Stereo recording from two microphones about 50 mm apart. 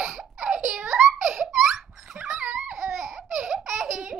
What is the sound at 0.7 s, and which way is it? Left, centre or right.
Giggle, centre.